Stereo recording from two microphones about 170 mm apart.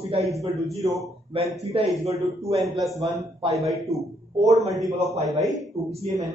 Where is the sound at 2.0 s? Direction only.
20° right (ahead or behind).